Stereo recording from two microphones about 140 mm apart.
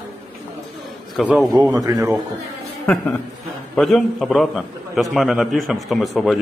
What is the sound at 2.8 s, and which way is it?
A woman's voice, 10° left (ahead or behind).